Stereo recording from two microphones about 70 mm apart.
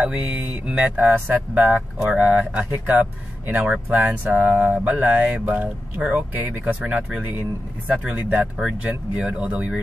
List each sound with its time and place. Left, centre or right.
0.0 s speech: centre
9.1 s speech: centre